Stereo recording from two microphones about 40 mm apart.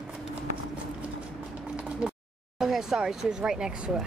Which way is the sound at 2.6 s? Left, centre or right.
Centre.